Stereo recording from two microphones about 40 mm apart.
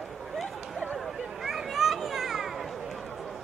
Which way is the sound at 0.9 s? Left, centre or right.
Centre.